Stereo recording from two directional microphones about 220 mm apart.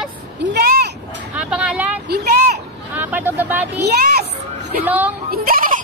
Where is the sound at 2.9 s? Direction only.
10° right (ahead or behind).